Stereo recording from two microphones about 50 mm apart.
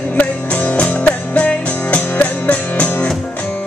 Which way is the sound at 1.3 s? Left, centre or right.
Left.